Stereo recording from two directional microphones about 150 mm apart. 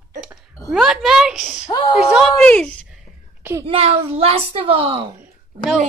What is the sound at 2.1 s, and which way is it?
Speech, centre (ahead or behind).